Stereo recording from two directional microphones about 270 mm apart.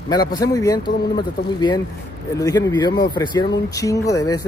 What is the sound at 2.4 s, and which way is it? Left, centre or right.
Speech, centre.